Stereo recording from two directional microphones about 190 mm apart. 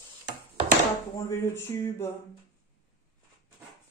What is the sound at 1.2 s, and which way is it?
Speech, 10° left (ahead or behind).